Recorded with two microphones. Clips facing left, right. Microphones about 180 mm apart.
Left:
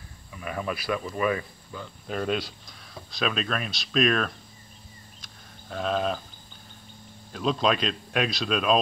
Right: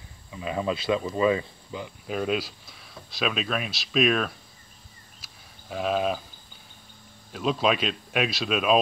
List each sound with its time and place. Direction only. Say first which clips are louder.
0.3 s speech: right 4 dB; 20° right (ahead or behind)
2.0 s speech: right 1 dB; 5° right (ahead or behind)
5.2 s sheep: left 2 dB; 5° right (ahead or behind)
7.3 s speech: even; 5° right (ahead or behind)